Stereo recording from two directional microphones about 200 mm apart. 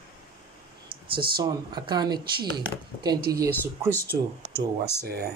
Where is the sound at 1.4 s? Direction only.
20° right (ahead or behind).